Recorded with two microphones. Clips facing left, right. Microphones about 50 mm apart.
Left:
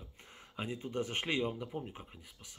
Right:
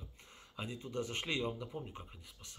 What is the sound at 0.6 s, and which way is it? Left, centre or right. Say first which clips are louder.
Speech: left 3 dB; left.